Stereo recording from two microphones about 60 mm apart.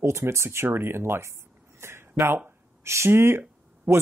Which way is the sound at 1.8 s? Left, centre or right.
Right.